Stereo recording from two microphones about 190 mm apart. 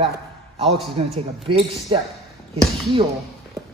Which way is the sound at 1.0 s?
30° right (ahead or behind).